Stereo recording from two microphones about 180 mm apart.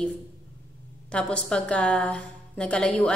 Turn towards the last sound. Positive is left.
turn(degrees=5)  # may be behind; listen again after turning